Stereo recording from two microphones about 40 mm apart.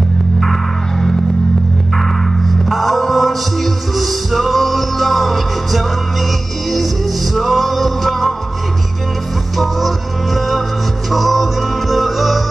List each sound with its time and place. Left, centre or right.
2.0 s music: centre
7.3 s music: centre
9.6 s music: centre